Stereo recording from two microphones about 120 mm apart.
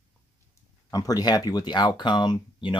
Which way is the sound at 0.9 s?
30° left (ahead or behind).